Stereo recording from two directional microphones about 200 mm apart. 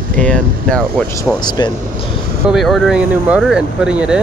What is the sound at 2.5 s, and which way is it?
Speech, centre (ahead or behind).